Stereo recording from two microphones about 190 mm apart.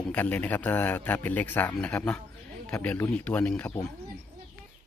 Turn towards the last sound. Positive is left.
turn(degrees=5)  # may be behind; listen again after turning